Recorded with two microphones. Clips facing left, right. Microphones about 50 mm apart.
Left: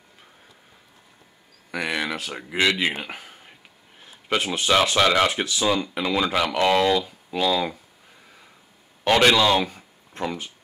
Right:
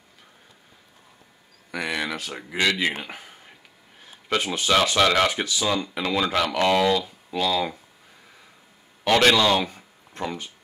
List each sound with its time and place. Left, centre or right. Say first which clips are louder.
1.7 s speech: left 1 dB; centre
4.0 s a sound: left 1 dB; centre
4.6 s speech: even; centre
5.3 s speech: left 2 dB; centre
9.1 s speech: left 1 dB; centre